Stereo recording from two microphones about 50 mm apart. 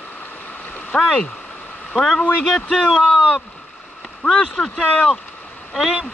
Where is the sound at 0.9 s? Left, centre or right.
Centre.